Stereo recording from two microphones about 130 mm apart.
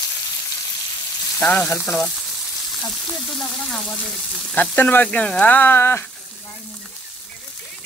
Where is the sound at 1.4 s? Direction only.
10° left (ahead or behind).